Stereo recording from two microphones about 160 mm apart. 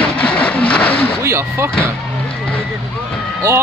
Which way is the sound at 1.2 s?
15° right (ahead or behind).